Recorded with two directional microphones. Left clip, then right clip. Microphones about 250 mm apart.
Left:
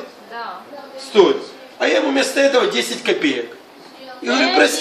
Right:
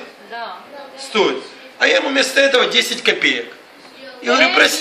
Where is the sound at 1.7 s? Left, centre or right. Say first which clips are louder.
Right 2 dB; right.